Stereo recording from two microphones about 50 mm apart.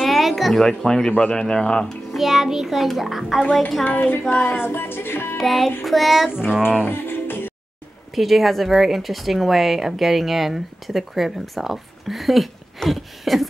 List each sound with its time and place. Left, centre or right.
0.0 s a sound: centre
1.3 s speech: centre
2.1 s speech: centre
3.8 s music: left
4.6 s music: left
5.4 s speech: centre
6.3 s speech: centre
6.8 s music: left
8.1 s speech: centre